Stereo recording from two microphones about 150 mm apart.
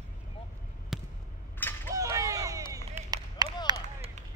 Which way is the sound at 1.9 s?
20° right (ahead or behind).